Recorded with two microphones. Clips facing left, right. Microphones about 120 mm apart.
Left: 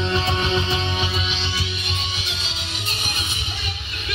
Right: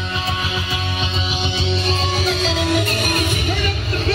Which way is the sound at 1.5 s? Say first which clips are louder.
Right 9 dB; 30° right (ahead or behind).